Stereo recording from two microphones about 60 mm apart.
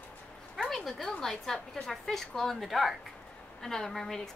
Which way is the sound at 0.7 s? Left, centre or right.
Centre.